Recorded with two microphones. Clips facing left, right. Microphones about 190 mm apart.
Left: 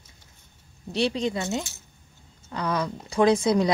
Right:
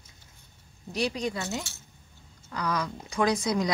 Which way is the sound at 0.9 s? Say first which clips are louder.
Left 4 dB; 25° left (ahead or behind).